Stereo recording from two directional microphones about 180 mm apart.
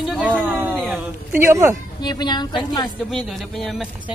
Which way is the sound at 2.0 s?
25° left (ahead or behind).